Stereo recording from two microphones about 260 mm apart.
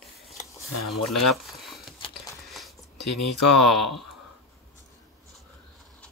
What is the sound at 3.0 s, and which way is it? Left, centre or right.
Speech, left.